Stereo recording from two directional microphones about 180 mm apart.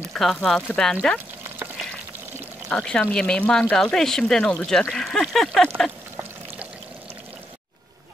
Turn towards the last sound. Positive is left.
turn(degrees=-10)  # may be behind; listen again after turning